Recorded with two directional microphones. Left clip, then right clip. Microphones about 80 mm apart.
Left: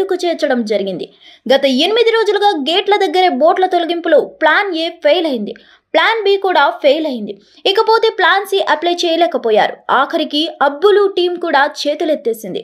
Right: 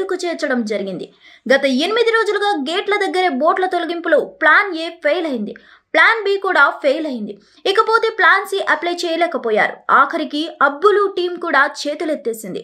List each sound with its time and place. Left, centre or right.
0.0 s a woman's voice: centre